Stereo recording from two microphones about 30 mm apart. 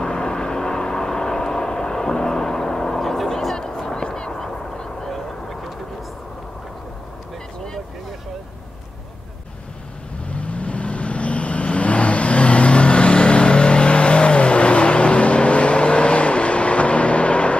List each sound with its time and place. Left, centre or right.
0.0 s vehicle: left
3.9 s a sound: left
4.9 s vehicle: centre
10.2 s vehicle: left